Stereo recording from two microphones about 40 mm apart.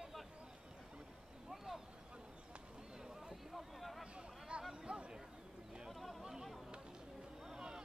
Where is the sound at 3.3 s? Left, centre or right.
Centre.